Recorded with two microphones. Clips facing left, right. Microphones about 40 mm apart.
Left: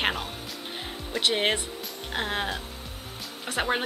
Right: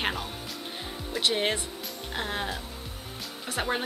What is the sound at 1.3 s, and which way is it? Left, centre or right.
A woman's voice, left.